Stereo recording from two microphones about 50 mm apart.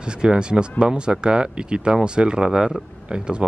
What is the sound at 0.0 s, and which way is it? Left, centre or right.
Speech, centre.